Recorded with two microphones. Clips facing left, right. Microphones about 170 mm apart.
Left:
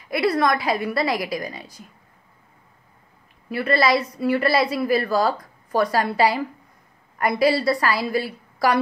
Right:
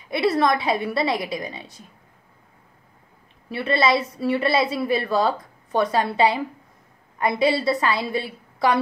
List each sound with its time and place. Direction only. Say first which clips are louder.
0.1 s a woman's voice: even; 25° right (ahead or behind)
3.5 s a woman's voice: left 1 dB; 25° right (ahead or behind)